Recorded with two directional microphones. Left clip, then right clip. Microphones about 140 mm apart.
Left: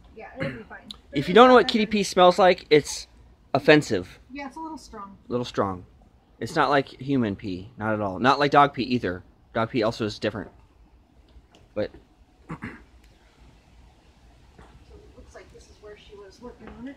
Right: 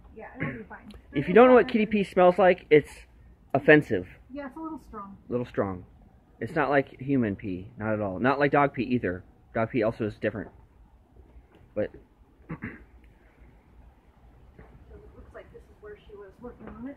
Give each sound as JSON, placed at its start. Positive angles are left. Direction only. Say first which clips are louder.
{"t": 0.4, "sound": "speech", "louder": "left 3 dB", "side_deg": 20}
{"t": 5.3, "sound": "speech", "louder": "left 3 dB", "side_deg": 25}
{"t": 12.4, "sound": "duck", "louder": "left 2 dB", "side_deg": 15}
{"t": 15.8, "sound": "a sound", "louder": "left 1 dB", "side_deg": 15}